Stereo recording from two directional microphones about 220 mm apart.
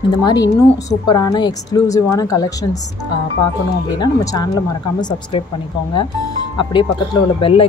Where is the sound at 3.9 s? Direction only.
20° left (ahead or behind).